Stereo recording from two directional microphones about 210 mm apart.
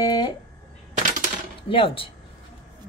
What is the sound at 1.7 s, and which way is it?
Speech, 25° left (ahead or behind).